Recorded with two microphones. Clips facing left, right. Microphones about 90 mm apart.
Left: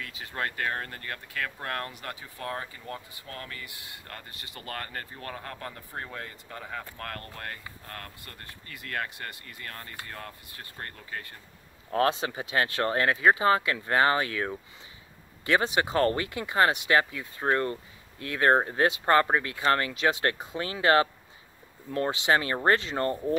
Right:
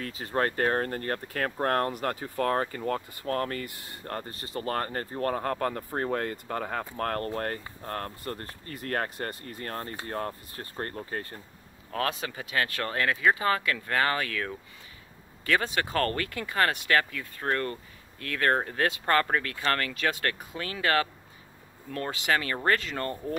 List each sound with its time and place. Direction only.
0.0 s speech: 40° right (ahead or behind)
11.9 s speech: 30° left (ahead or behind)